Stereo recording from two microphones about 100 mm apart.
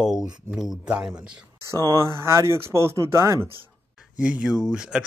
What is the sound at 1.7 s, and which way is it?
Speech, 30° right (ahead or behind).